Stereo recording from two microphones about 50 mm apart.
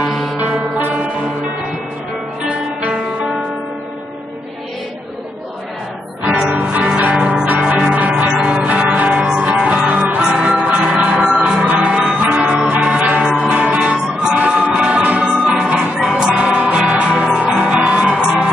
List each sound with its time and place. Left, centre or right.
6.2 s music: centre
6.5 s music: right
8.3 s change ringing: right
9.4 s music: right
12.0 s music: centre
15.8 s music: centre